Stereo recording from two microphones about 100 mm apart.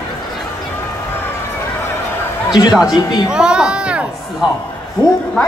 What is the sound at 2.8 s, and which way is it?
Speech, 40° left (ahead or behind).